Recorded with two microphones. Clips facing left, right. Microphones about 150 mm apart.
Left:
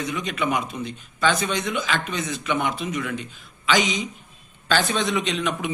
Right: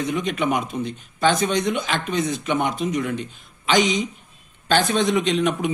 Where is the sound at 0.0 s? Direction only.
50° right (ahead or behind).